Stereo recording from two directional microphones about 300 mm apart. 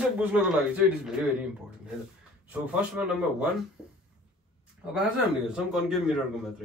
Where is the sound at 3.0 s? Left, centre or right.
Centre.